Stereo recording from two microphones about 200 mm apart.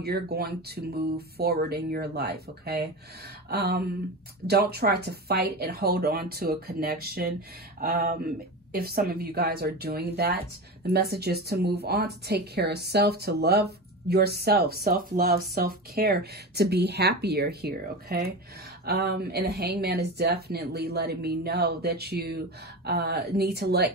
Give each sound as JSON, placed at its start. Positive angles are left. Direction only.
{"t": 0.0, "sound": "a woman's voice", "side_deg": -50}